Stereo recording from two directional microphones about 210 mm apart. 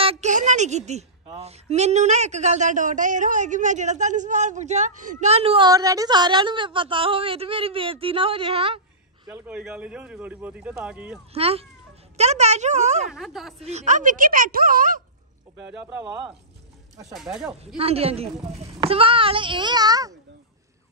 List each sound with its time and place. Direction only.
0.0 s a woman's voice: 30° right (ahead or behind)
5.7 s a woman's voice: 15° right (ahead or behind)
9.3 s speech: 5° right (ahead or behind)
11.3 s a woman's voice: 30° right (ahead or behind)
13.1 s speech: centre (ahead or behind)
13.6 s a woman's voice: 30° right (ahead or behind)
15.5 s speech: 5° right (ahead or behind)
17.7 s a woman's voice: 30° right (ahead or behind)